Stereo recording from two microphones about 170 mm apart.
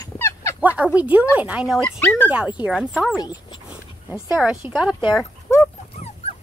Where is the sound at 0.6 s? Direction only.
10° right (ahead or behind).